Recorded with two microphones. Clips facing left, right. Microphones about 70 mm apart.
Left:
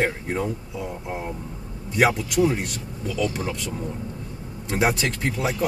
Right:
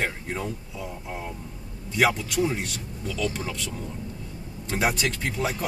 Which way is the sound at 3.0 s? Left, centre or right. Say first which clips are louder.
Left 3 dB; left.